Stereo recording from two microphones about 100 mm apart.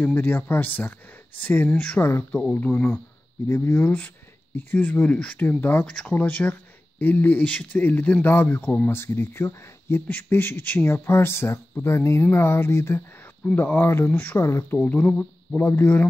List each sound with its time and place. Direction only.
0.0 s a man's voice: 20° left (ahead or behind)
1.7 s speech: 10° left (ahead or behind)
2.0 s a man's voice: 25° left (ahead or behind)
2.3 s a man's voice: 15° left (ahead or behind)
5.9 s speech: 5° left (ahead or behind)
6.1 s a man's voice: 20° left (ahead or behind)
15.5 s a man's voice: 20° left (ahead or behind)